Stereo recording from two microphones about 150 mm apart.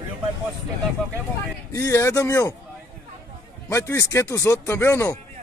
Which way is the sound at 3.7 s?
20° left (ahead or behind).